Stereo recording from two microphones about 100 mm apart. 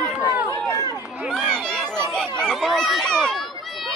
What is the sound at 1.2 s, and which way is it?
Chatter, 5° left (ahead or behind).